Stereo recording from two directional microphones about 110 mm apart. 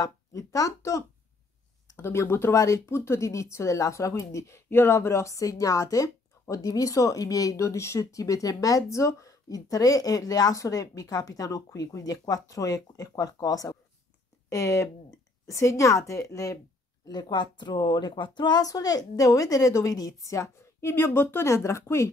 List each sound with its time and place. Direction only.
0.0 s speech: 30° left (ahead or behind)
17.0 s speech: 40° left (ahead or behind)